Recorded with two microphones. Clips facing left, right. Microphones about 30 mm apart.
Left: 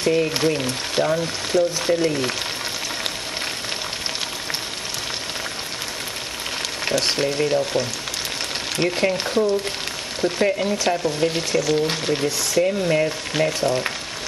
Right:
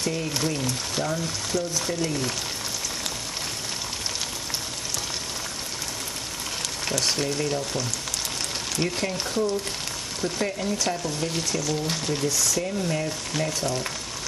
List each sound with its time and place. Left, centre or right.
0.0 s speech: left
6.8 s speech: left